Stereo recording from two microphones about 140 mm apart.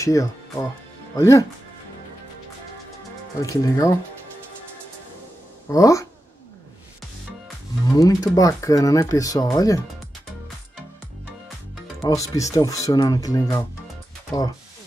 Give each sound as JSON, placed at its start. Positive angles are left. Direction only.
{"t": 0.0, "sound": "speech", "side_deg": 25}
{"t": 3.4, "sound": "speech", "side_deg": 25}
{"t": 5.7, "sound": "speech", "side_deg": 25}
{"t": 7.8, "sound": "speech", "side_deg": 25}
{"t": 12.0, "sound": "speech", "side_deg": 25}